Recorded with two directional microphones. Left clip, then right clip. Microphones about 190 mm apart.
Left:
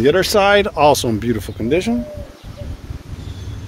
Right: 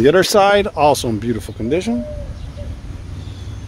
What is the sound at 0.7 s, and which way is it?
Speech, centre (ahead or behind).